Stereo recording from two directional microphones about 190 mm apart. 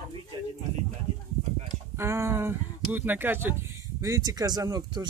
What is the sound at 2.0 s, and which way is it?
Speech, 15° right (ahead or behind).